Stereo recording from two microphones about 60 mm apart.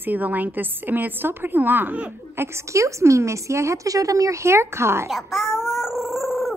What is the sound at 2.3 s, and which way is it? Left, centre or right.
A woman's voice, right.